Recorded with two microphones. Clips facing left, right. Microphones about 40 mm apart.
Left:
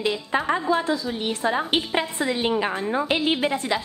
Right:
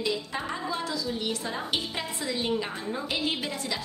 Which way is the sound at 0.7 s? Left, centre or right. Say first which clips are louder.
Left 7 dB; left.